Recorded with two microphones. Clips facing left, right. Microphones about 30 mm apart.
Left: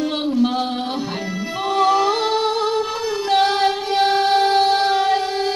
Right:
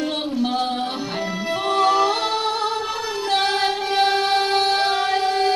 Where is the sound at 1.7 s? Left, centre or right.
Centre.